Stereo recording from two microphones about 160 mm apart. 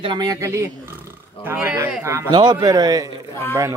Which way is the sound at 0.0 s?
30° right (ahead or behind).